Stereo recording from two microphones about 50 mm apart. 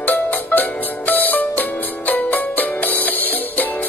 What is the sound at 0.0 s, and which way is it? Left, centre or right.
Music, left.